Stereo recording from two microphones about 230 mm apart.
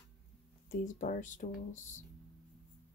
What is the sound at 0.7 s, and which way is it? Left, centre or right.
Speech, left.